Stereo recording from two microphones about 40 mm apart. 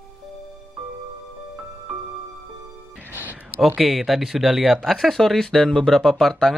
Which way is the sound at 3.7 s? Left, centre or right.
Centre.